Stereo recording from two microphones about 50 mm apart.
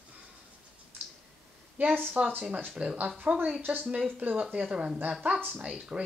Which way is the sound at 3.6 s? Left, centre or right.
Right.